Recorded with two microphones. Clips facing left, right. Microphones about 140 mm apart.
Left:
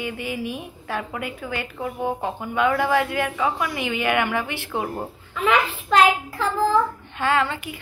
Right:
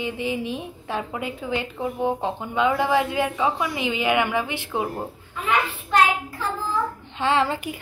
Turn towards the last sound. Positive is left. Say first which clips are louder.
# even
turn(degrees=-25)  # may be behind; listen again after turning